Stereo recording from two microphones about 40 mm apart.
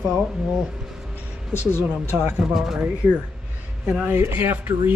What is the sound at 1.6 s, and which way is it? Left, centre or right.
Speech, left.